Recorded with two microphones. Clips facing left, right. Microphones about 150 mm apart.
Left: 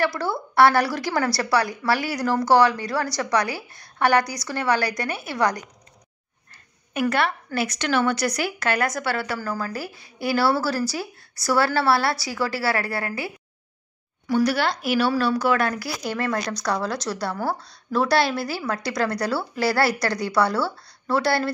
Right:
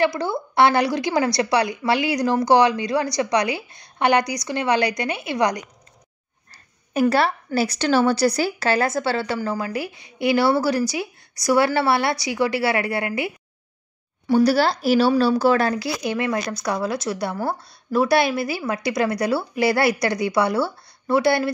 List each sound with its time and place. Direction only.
0.0 s a woman's voice: 15° right (ahead or behind)
6.5 s a woman's voice: 35° right (ahead or behind); by 13.3 s 20° right (ahead or behind)
14.2 s a woman's voice: 30° right (ahead or behind)
15.7 s a woman's voice: 20° right (ahead or behind)